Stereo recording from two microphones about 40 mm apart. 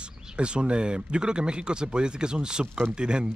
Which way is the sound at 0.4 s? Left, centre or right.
Right.